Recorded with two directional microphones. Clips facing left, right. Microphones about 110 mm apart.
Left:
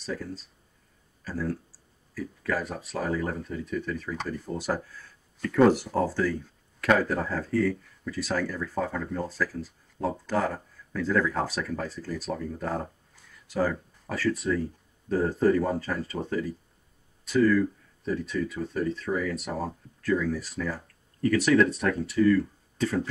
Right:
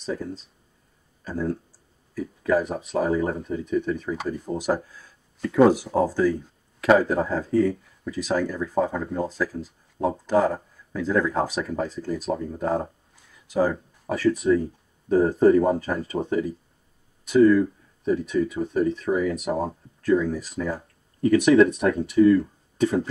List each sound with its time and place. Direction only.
0.0 s speech: 20° right (ahead or behind)